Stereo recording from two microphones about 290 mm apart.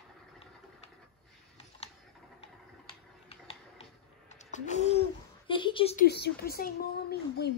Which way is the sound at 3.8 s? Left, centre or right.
Left.